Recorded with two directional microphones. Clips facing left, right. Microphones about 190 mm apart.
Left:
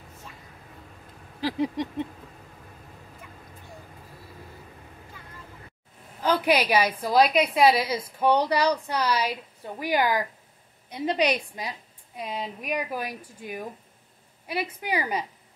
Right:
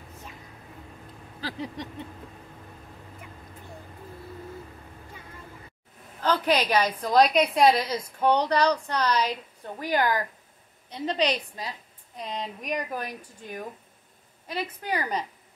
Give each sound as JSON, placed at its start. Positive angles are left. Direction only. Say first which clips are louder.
{"t": 1.4, "sound": "a woman's voice", "louder": "left 8 dB", "side_deg": 15}
{"t": 6.2, "sound": "a woman's voice", "louder": "left 1 dB", "side_deg": 10}